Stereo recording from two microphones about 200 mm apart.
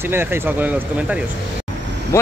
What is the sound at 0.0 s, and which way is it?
Speech, 10° right (ahead or behind).